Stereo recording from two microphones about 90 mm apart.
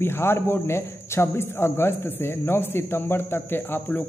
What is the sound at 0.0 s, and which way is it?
Speech, 25° left (ahead or behind).